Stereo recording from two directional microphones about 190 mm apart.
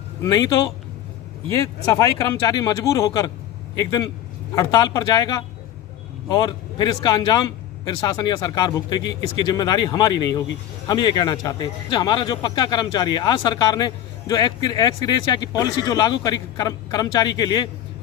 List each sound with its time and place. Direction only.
0.2 s speech: 20° left (ahead or behind)
1.9 s speech: 15° left (ahead or behind)